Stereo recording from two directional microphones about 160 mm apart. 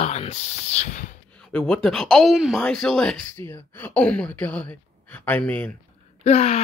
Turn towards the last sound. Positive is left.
turn(degrees=45)  # may be behind; listen again after turning